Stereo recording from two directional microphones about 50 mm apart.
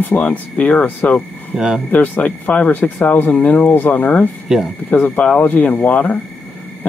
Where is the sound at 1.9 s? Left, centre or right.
Left.